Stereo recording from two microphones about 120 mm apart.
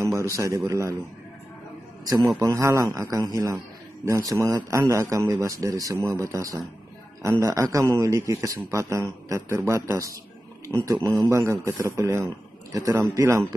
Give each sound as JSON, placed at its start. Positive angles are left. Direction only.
{"t": 0.0, "sound": "a sound", "side_deg": -25}
{"t": 0.7, "sound": "a man's voice", "side_deg": -25}
{"t": 2.3, "sound": "a man's voice", "side_deg": -25}